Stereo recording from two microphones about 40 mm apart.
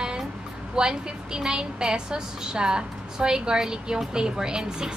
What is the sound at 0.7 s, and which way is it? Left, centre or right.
A woman's voice, centre.